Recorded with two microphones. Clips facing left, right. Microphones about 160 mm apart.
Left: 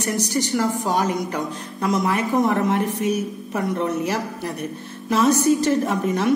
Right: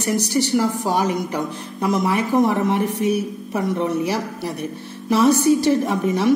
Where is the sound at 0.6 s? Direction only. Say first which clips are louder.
Even; 15° right (ahead or behind).